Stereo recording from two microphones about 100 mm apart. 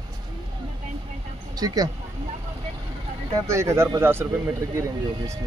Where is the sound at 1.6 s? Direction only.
40° right (ahead or behind).